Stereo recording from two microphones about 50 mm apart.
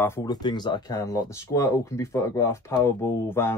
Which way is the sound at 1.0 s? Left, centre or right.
Left.